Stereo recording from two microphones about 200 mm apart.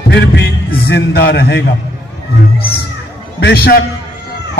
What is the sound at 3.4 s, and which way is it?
Speech, 55° left (ahead or behind).